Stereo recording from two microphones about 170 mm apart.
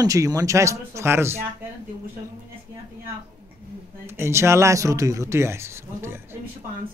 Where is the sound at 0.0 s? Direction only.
20° right (ahead or behind).